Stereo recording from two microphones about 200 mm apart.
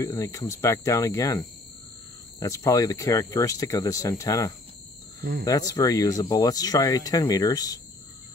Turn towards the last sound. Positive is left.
turn(degrees=20)  # may be behind; listen again after turning